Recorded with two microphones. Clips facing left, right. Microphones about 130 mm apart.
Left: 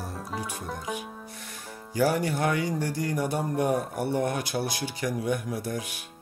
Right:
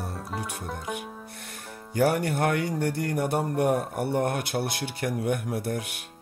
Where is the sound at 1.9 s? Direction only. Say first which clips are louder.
Right 1 dB; 60° right (ahead or behind).